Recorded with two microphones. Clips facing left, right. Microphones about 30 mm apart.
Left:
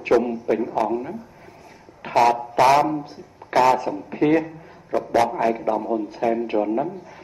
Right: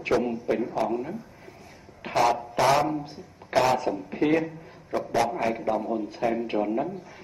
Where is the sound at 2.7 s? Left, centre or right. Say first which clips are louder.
Left 5 dB; centre.